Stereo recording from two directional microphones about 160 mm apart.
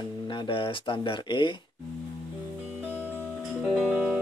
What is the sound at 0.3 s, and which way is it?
Speech, 30° left (ahead or behind).